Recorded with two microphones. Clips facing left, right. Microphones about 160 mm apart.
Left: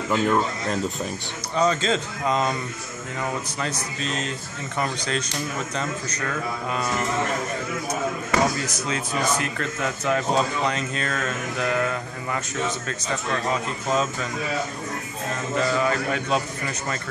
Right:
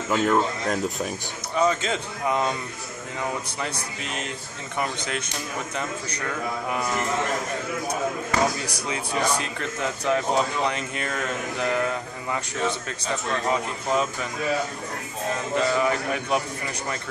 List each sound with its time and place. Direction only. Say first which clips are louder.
0.1 s speech: even; 5° right (ahead or behind)
4.0 s speech: left 5 dB; 15° right (ahead or behind)
8.8 s speech: right 1 dB; 15° right (ahead or behind)
13.5 s speech: right 1 dB; 15° right (ahead or behind)
15.5 s speech: even; 15° right (ahead or behind)